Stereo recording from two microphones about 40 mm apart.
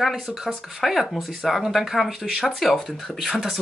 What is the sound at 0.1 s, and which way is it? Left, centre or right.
Speech, centre.